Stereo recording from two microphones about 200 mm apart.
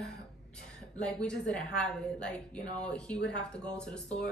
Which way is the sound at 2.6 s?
35° left (ahead or behind).